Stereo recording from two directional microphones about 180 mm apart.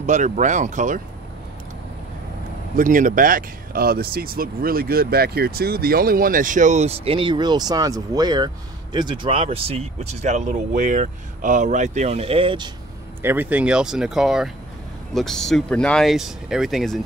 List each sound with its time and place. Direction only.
0.0 s speech: 40° right (ahead or behind)
2.7 s speech: 45° right (ahead or behind); by 12.7 s 25° right (ahead or behind)
13.2 s speech: 10° right (ahead or behind)